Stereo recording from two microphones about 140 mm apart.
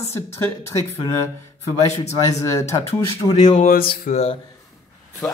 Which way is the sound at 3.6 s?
85° left.